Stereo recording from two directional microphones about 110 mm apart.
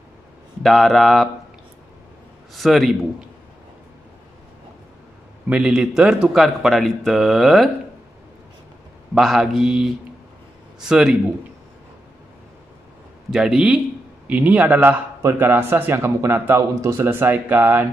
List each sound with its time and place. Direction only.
0.6 s speech: 5° left (ahead or behind)
2.5 s speech: centre (ahead or behind)
5.5 s speech: 5° right (ahead or behind)
9.1 s speech: 5° right (ahead or behind)
13.3 s a man's voice: 5° right (ahead or behind)